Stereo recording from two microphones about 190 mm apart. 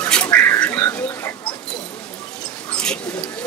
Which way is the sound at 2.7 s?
5° left (ahead or behind).